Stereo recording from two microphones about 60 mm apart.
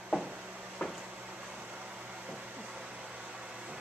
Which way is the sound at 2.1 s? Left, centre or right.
Centre.